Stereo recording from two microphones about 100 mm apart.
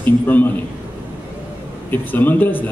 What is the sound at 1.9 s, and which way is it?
Speech, 20° left (ahead or behind).